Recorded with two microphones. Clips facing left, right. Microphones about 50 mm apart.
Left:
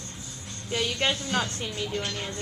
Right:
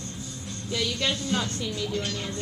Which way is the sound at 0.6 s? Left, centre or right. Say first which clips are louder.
Left 1 dB; left.